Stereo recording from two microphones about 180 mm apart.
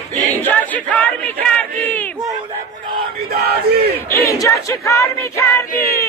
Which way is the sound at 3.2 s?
65° right (ahead or behind).